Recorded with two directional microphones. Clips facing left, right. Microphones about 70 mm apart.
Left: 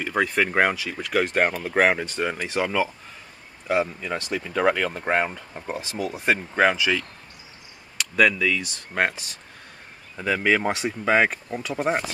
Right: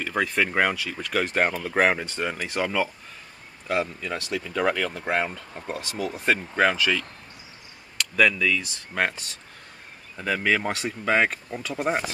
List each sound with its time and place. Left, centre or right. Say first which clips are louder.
0.0 s speech: left 2 dB; centre